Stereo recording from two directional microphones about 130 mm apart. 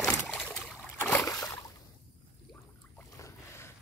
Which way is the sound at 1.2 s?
25° left (ahead or behind).